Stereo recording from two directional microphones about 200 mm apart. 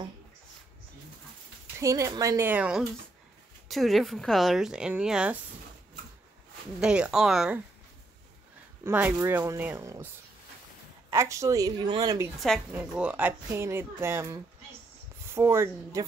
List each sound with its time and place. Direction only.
1.8 s a woman's voice: 15° right (ahead or behind)
6.8 s speech: 5° right (ahead or behind)
8.8 s a woman's voice: 10° right (ahead or behind)
11.1 s a woman's voice: 15° right (ahead or behind)
12.4 s a woman's voice: 5° right (ahead or behind)